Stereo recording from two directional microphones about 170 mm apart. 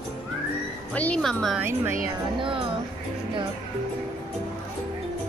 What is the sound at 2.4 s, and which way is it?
Speech, 30° right (ahead or behind).